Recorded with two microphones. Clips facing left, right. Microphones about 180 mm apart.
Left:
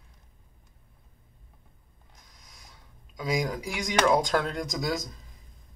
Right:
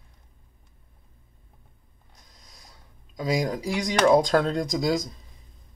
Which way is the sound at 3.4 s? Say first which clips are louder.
Right 4 dB; 30° right (ahead or behind).